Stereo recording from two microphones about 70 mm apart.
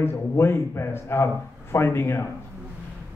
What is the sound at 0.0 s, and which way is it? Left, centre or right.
A man's voice, left.